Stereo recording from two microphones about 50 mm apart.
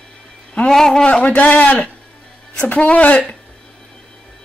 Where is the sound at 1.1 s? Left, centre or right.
Left.